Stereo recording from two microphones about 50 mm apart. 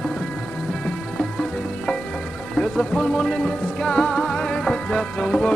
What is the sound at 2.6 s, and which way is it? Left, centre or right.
Music, centre.